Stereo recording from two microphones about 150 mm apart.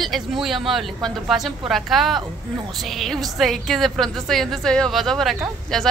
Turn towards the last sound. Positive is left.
turn(degrees=0)  # may be behind; listen again after turning